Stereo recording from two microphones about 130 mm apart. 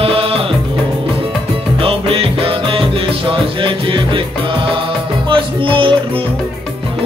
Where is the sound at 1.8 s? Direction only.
45° right (ahead or behind).